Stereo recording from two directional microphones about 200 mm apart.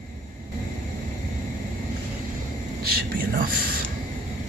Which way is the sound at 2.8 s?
45° right (ahead or behind).